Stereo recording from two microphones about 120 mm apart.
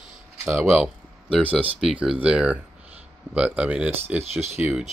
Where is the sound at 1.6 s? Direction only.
10° right (ahead or behind).